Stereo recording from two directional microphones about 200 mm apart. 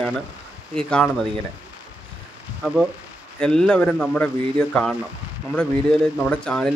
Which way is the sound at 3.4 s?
5° left (ahead or behind).